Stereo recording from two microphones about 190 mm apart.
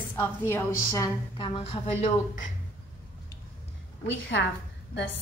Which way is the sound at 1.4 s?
30° left (ahead or behind).